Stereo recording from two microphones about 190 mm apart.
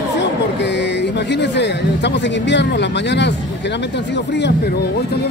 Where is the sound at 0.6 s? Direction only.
65° left (ahead or behind).